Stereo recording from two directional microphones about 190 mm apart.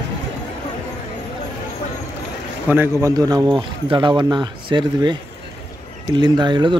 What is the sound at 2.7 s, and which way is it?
A man's voice, 15° right (ahead or behind).